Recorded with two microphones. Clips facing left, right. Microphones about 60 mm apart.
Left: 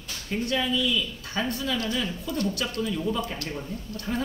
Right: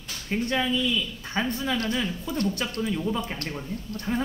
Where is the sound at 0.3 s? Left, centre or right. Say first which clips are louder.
Right 1 dB; right.